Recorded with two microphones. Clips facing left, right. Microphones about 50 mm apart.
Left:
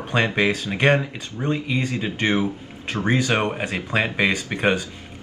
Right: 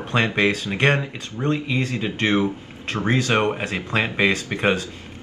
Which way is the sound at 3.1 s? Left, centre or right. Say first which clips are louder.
Right 1 dB; centre.